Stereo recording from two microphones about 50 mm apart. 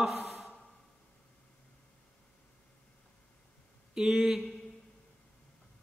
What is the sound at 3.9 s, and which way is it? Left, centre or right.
Speech, centre.